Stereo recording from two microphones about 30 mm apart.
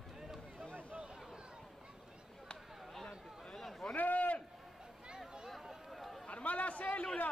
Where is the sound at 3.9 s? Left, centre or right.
Left.